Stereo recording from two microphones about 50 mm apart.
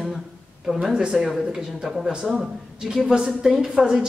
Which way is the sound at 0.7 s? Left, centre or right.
Centre.